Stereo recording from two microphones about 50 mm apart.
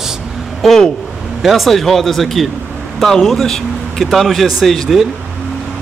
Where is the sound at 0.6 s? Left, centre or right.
Centre.